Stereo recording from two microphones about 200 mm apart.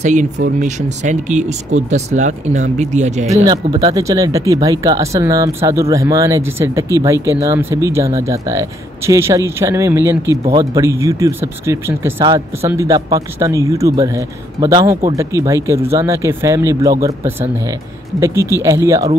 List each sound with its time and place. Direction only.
0.0 s speech: 40° right (ahead or behind)
3.4 s speech: 20° right (ahead or behind)
12.2 s speech: 25° right (ahead or behind)
12.6 s speech: 15° right (ahead or behind)